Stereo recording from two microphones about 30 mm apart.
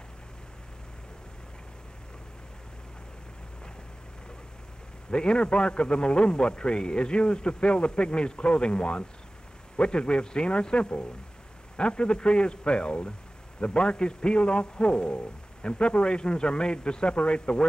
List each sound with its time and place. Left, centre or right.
5.1 s a man's voice: left